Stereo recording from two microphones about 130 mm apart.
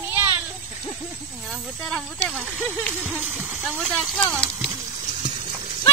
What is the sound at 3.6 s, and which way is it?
Speech, centre (ahead or behind).